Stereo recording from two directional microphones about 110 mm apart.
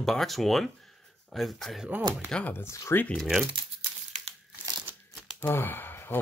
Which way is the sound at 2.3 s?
15° left (ahead or behind).